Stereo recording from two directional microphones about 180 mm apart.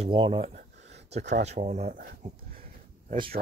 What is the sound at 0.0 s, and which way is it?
Speech, 30° right (ahead or behind).